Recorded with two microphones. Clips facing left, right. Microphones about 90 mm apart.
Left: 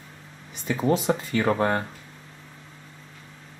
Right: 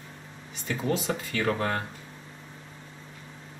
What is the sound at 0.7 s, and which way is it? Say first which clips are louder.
Speech: left 6 dB; 20° left (ahead or behind).